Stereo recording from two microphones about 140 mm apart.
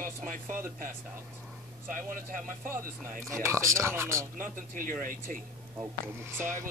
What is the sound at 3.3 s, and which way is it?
Speech, 20° right (ahead or behind).